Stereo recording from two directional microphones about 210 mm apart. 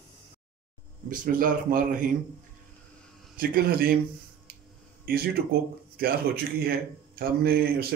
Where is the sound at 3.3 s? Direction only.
45° right (ahead or behind).